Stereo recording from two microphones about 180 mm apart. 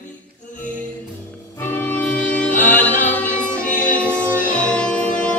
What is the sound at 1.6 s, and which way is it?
Music, 10° left (ahead or behind).